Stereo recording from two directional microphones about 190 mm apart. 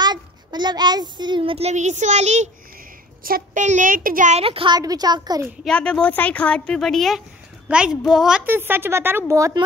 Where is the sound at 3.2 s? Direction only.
50° right (ahead or behind); by 5.5 s 20° right (ahead or behind).